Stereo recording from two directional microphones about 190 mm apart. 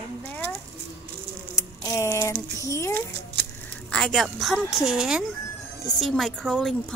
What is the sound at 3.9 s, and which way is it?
A woman's voice, centre (ahead or behind).